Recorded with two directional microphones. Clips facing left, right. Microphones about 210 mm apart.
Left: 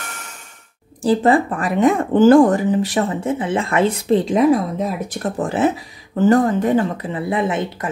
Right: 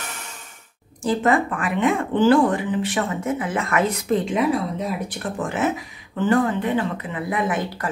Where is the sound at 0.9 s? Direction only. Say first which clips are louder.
Left 5 dB; 35° left (ahead or behind).